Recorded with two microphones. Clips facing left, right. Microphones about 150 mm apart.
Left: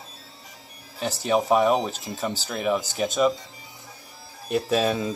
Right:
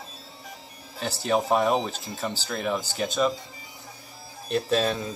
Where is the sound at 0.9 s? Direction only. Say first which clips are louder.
Left 2 dB; 5° left (ahead or behind).